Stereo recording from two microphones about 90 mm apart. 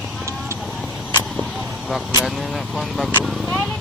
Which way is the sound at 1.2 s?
5° right (ahead or behind).